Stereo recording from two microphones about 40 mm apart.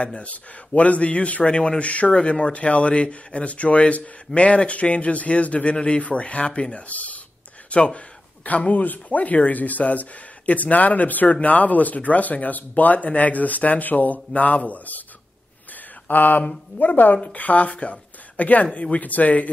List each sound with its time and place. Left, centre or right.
0.0 s speech: left
2.1 s speech: left
2.5 s speech: left
16.1 s speech: left